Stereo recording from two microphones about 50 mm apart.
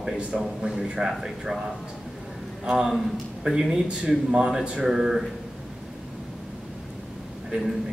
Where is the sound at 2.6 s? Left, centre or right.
Centre.